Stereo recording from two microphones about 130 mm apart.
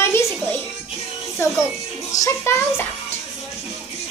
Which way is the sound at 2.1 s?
20° left (ahead or behind).